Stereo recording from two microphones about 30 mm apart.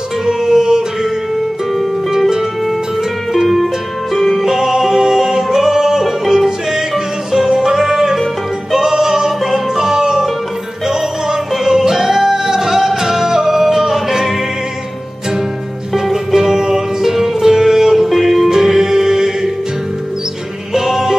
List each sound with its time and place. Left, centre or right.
0.3 s music: centre
2.1 s music: centre
4.1 s music: centre
4.5 s music: centre
11.5 s music: centre
15.9 s music: centre
16.3 s music: centre
20.7 s music: centre